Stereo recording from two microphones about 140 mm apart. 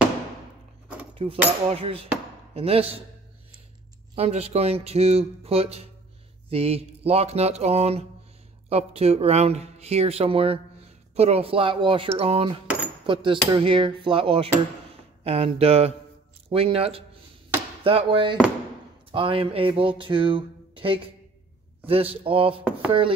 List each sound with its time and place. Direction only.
1.1 s speech: 40° right (ahead or behind)
4.1 s speech: 50° right (ahead or behind)